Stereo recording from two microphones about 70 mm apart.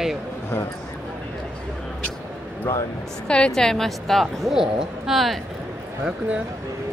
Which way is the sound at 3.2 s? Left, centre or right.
Centre.